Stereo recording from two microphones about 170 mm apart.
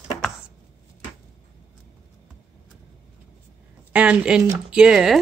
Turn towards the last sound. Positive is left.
turn(degrees=-5)  # may be behind; listen again after turning